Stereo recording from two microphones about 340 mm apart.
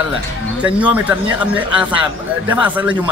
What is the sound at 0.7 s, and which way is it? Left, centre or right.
Speech, centre.